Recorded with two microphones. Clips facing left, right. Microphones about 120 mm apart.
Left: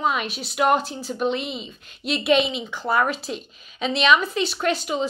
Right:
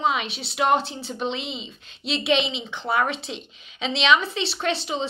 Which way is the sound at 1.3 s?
50° left (ahead or behind).